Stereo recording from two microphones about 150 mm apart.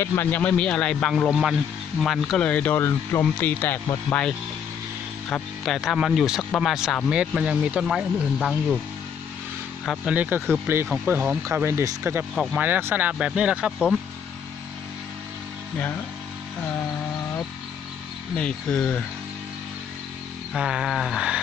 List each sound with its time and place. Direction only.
0.0 s a man's voice: 15° left (ahead or behind); by 8.7 s centre (ahead or behind)
9.8 s speech: 10° right (ahead or behind)
18.3 s a man's voice: 5° left (ahead or behind)
20.5 s speech: 5° right (ahead or behind)